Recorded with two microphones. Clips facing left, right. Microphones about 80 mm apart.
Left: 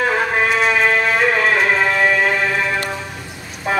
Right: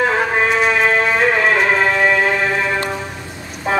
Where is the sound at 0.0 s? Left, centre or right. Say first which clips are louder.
Right 1 dB; centre.